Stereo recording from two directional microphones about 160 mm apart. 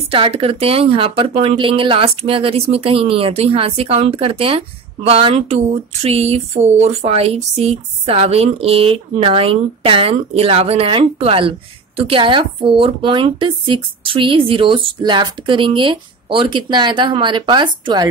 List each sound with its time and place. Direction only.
0.1 s speech: 35° right (ahead or behind)